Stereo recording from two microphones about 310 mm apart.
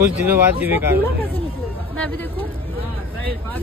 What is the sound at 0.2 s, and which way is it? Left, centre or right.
Speech, centre.